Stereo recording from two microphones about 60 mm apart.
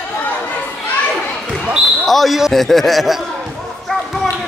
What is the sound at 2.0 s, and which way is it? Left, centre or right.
Speech, centre.